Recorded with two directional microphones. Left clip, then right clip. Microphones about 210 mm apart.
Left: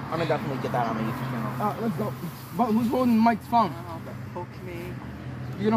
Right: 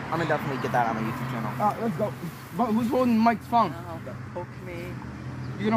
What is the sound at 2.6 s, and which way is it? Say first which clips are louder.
Speech: even; centre (ahead or behind).